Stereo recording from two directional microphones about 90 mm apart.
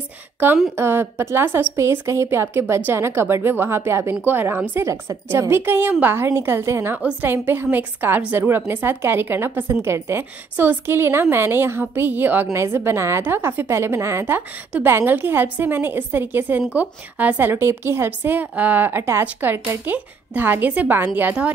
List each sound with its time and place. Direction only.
0.7 s a woman's voice: 25° right (ahead or behind)